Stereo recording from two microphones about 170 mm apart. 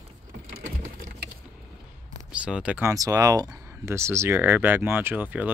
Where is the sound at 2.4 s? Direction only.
5° right (ahead or behind).